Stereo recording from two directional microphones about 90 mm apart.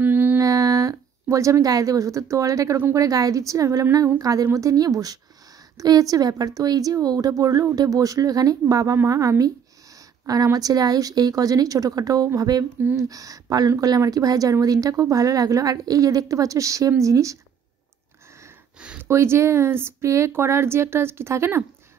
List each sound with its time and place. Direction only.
0.0 s mantra: 20° right (ahead or behind)
0.4 s a woman's voice: 40° right (ahead or behind)
18.8 s a sound: 10° right (ahead or behind)
19.0 s speech: 30° right (ahead or behind)